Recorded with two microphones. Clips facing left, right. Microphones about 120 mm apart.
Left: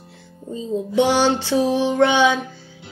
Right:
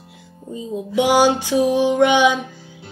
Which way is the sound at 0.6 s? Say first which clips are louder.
Left 2 dB; 10° right (ahead or behind).